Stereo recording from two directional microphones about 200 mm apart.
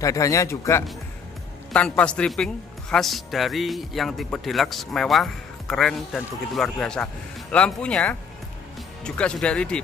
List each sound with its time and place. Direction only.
0.0 s speech: 15° left (ahead or behind)